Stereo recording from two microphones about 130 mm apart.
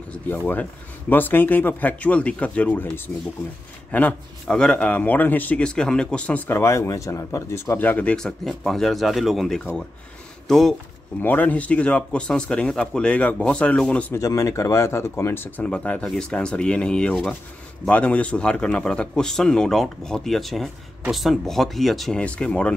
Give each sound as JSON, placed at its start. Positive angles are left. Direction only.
{"t": 0.1, "sound": "a man's voice", "side_deg": 15}
{"t": 11.1, "sound": "a man's voice", "side_deg": 15}
{"t": 14.1, "sound": "a man's voice", "side_deg": 25}